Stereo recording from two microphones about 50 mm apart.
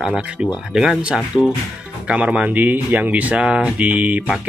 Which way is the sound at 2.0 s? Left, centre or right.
Right.